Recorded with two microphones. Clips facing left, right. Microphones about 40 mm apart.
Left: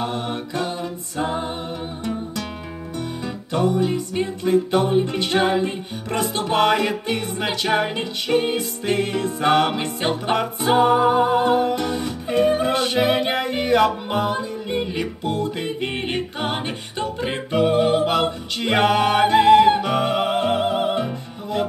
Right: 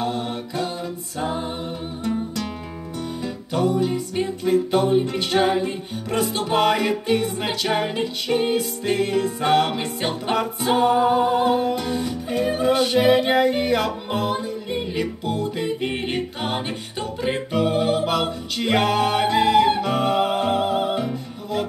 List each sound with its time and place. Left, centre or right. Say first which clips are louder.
0.1 s mantra: left 1 dB; left
0.7 s a capella: left 1 dB; left
3.3 s music: left 1 dB; left
5.0 s music: even; left
6.1 s music: even; left
12.4 s music: left 1 dB; left
13.3 s music: right 1 dB; left
14.7 s music: left 1 dB; centre
15.2 s music: left 1 dB; left
15.6 s music: right 1 dB; centre
19.8 s music: even; left